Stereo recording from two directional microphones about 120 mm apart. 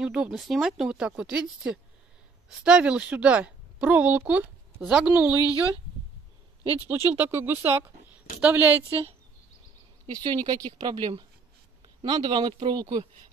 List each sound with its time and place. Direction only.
0.0 s a woman's voice: 5° right (ahead or behind)
6.9 s a woman's voice: 15° right (ahead or behind)
10.0 s speech: 35° right (ahead or behind)